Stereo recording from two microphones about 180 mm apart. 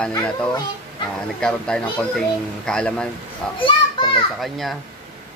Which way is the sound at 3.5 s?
30° left (ahead or behind).